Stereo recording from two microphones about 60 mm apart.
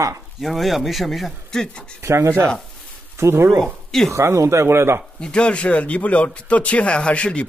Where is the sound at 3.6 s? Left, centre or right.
Centre.